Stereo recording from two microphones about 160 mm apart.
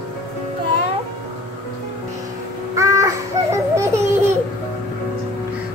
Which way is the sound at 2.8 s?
20° right (ahead or behind).